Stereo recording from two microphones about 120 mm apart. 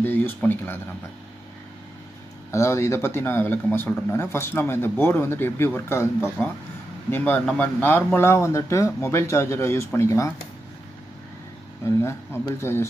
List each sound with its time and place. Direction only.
0.0 s speech: 15° left (ahead or behind)
2.5 s speech: 25° left (ahead or behind)
11.8 s speech: 20° left (ahead or behind)